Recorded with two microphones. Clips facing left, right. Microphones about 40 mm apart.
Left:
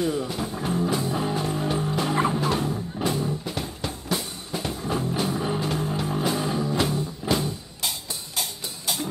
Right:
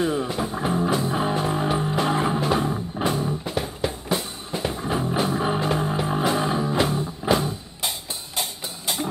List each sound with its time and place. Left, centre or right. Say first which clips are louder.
0.0 s music: right 2 dB; right